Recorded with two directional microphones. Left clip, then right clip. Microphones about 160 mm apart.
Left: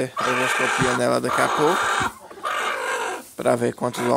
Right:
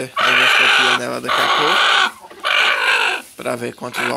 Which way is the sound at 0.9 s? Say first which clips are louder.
Even; 40° left (ahead or behind).